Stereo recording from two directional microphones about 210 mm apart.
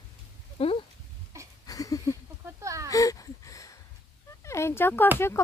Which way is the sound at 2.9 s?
15° left (ahead or behind).